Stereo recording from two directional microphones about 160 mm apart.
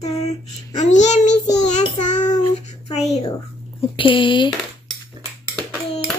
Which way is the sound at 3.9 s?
30° left (ahead or behind).